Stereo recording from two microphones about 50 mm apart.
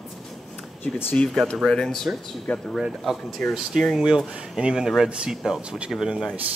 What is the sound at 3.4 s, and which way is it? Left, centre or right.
Speech, centre.